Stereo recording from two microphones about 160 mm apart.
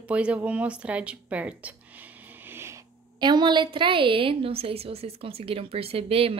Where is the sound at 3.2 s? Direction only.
25° right (ahead or behind).